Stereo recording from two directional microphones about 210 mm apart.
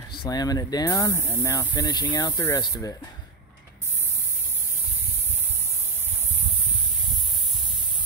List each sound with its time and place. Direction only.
0.2 s speech: 20° left (ahead or behind)